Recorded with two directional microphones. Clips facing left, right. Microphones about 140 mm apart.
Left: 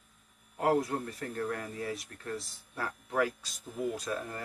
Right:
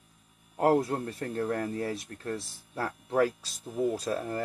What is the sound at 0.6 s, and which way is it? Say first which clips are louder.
Speech: right 4 dB; 30° right (ahead or behind).